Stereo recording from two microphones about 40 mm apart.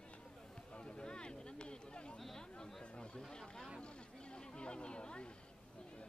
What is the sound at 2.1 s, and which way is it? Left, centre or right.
Chatter, centre.